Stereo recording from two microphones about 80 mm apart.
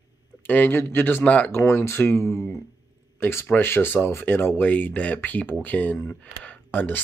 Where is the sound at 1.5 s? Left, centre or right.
Left.